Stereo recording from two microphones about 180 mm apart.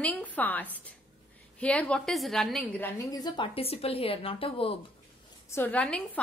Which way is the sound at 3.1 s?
20° left (ahead or behind).